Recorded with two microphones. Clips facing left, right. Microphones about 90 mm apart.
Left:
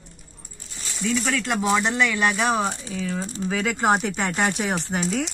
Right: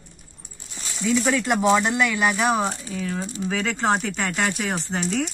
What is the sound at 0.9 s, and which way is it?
Speech, 5° right (ahead or behind).